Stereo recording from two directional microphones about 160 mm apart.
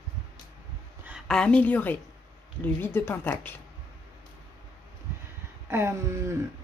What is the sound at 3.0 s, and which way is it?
Speech, 15° left (ahead or behind).